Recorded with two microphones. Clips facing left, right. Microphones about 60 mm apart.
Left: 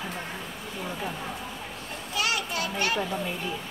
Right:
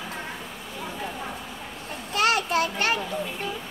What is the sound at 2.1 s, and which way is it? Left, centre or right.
Children playing, right.